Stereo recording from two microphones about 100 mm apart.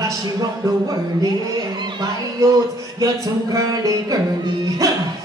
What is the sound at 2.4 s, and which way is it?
A man's voice, 35° right (ahead or behind).